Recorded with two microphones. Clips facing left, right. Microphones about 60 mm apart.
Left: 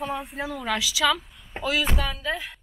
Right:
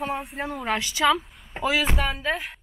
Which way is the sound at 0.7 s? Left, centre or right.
Right.